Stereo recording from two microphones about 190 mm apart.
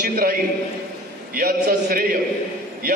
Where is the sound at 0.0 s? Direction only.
50° right (ahead or behind).